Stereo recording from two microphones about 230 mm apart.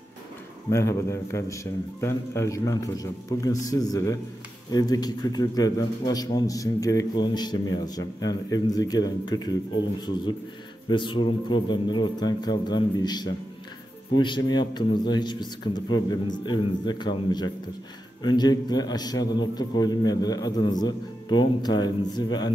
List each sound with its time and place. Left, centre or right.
0.7 s a man's voice: centre